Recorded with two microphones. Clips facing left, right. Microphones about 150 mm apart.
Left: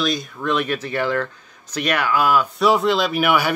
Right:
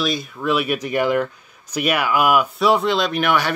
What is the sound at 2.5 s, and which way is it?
Speech, centre (ahead or behind).